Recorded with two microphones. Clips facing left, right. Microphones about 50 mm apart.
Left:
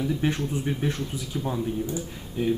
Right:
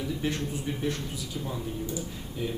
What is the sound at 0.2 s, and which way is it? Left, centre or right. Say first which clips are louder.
A man's voice: left 4 dB; left.